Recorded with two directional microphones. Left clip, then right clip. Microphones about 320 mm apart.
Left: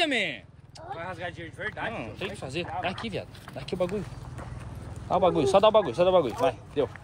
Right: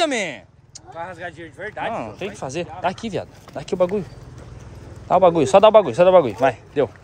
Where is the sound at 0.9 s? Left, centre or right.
Right.